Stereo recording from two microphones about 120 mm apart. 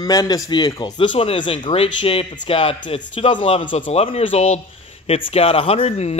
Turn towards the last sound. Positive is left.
turn(degrees=60)  # may be behind; listen again after turning